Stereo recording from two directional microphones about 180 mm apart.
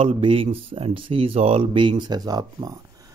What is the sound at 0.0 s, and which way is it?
Speech, 30° right (ahead or behind).